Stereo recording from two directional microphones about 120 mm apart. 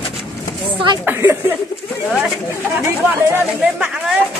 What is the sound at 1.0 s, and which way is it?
Speech, 20° right (ahead or behind).